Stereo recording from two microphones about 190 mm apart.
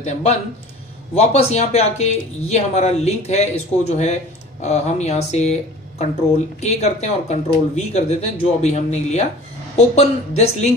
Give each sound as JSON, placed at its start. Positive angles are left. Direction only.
{"t": 0.0, "sound": "speech", "side_deg": 35}